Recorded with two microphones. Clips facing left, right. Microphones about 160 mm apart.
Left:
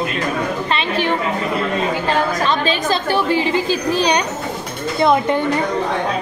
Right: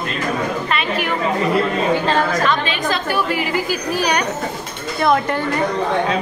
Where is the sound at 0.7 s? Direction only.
25° left (ahead or behind).